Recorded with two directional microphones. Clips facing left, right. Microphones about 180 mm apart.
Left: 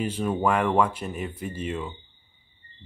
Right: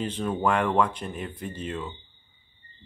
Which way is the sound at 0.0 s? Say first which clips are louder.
Left 2 dB; 10° left (ahead or behind).